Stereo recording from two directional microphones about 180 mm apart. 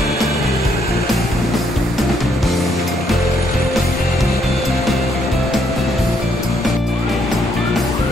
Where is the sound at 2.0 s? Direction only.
Centre (ahead or behind).